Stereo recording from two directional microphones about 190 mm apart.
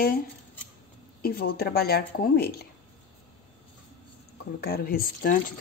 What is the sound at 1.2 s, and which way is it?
Speech, 55° left (ahead or behind).